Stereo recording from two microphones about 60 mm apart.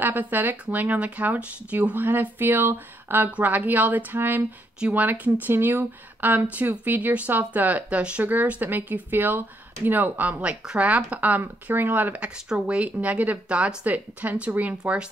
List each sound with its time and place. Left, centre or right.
0.0 s speech: right
3.3 s speech: right
4.7 s speech: right
5.5 s speech: right